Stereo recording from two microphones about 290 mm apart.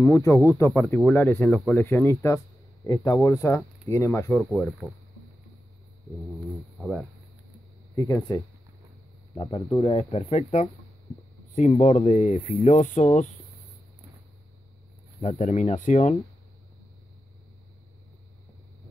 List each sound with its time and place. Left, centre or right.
0.0 s speech: centre
6.8 s speech: centre
7.9 s speech: centre
9.4 s speech: centre
15.1 s speech: left